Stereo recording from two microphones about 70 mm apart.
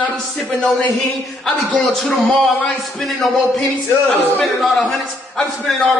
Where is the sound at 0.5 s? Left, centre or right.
Centre.